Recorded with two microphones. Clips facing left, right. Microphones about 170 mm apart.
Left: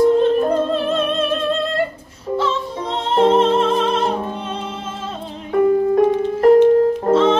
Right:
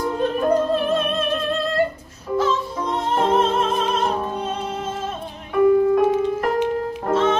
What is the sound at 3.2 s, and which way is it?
Music, 30° left (ahead or behind).